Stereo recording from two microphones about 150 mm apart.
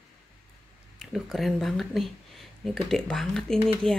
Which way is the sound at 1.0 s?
Centre (ahead or behind).